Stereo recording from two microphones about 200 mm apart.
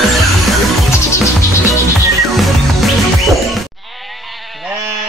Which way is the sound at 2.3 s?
Centre (ahead or behind).